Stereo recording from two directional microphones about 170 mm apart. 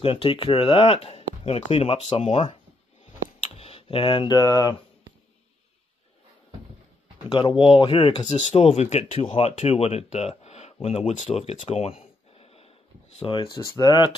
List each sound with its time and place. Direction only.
0.0 s speech: 35° left (ahead or behind)
3.5 s speech: 35° left (ahead or behind)
7.2 s speech: 30° left (ahead or behind)